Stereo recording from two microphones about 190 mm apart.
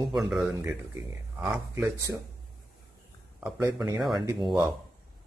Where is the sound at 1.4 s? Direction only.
5° right (ahead or behind).